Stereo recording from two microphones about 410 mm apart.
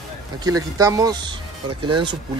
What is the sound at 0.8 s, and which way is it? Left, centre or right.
Speech, centre.